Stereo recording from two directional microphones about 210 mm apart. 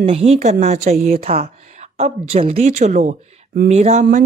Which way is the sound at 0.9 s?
45° right (ahead or behind).